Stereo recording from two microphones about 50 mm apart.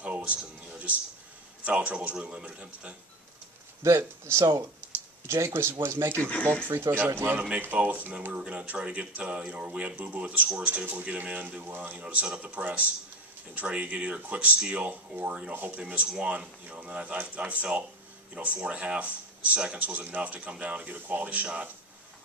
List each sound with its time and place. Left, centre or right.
0.0 s music: right
1.6 s speech: right
3.8 s speech: right
5.5 s speech: right
6.1 s speech: left
6.7 s speech: right
7.3 s speech: right
10.9 s speech: right
12.0 s speech: right